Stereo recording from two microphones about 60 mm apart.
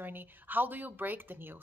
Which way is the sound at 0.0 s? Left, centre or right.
Right.